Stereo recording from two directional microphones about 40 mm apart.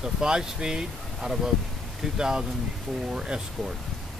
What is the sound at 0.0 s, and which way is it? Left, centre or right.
Speech, centre.